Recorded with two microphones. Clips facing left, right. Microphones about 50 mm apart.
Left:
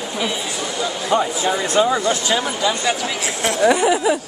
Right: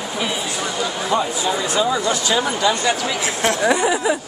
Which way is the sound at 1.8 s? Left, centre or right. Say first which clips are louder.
Left 4 dB; left.